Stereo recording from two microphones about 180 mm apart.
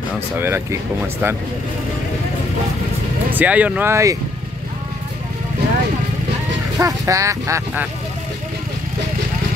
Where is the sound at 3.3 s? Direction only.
10° right (ahead or behind).